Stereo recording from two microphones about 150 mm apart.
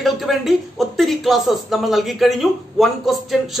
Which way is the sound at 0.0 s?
Centre (ahead or behind).